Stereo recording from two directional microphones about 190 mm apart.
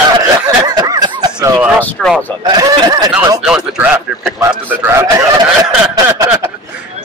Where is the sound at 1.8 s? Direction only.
Centre (ahead or behind).